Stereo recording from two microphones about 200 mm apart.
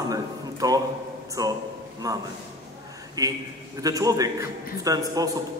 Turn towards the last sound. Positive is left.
turn(degrees=-20)  # may be behind; listen again after turning